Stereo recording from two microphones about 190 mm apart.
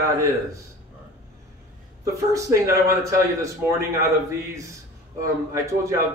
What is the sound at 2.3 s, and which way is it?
Speech, 15° right (ahead or behind).